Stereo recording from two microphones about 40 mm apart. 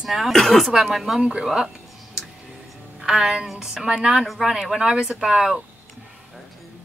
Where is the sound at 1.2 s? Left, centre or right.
Right.